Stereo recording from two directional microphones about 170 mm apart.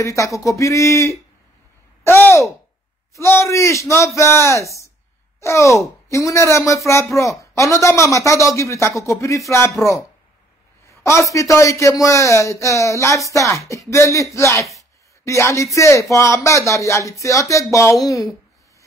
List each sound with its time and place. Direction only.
0.0 s speech: 20° left (ahead or behind)